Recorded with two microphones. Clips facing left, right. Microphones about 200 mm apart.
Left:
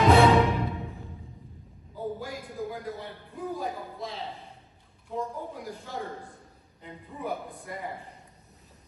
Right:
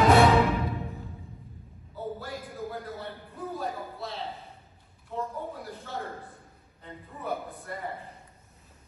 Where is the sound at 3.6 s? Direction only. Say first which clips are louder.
Even; 15° left (ahead or behind).